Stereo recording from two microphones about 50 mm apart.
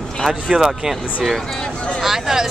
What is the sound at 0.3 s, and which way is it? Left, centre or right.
Speech, centre.